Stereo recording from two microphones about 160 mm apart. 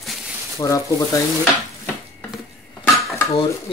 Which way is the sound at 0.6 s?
20° left (ahead or behind).